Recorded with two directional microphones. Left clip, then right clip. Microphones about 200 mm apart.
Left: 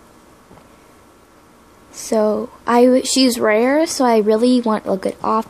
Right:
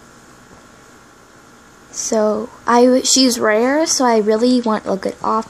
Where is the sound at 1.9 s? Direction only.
5° left (ahead or behind).